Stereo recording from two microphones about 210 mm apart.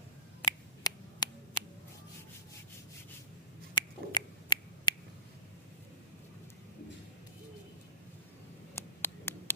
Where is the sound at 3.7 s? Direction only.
20° left (ahead or behind).